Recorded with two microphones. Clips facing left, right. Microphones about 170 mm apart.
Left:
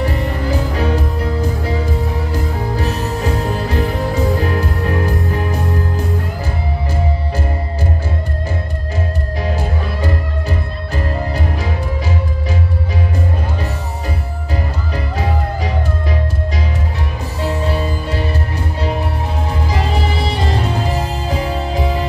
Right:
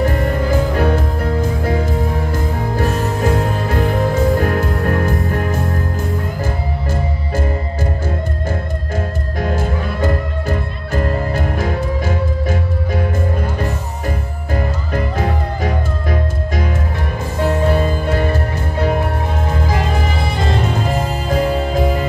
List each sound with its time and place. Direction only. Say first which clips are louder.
0.0 s music: right 3 dB; 50° right (ahead or behind)
9.4 s music: right 3 dB; 50° right (ahead or behind)
14.5 s music: right 3 dB; 50° right (ahead or behind)